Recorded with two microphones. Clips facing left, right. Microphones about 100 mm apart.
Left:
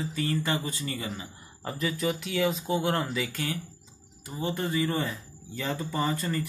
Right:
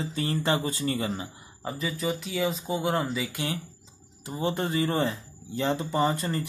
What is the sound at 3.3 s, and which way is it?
Speech, 20° right (ahead or behind).